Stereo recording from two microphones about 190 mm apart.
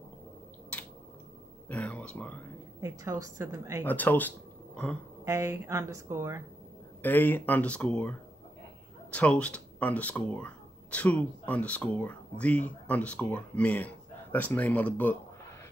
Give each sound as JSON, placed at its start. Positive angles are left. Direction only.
{"t": 1.7, "sound": "speech", "side_deg": 5}
{"t": 2.8, "sound": "speech", "side_deg": -15}
{"t": 3.8, "sound": "speech", "side_deg": 10}
{"t": 5.2, "sound": "speech", "side_deg": -15}
{"t": 7.0, "sound": "speech", "side_deg": 10}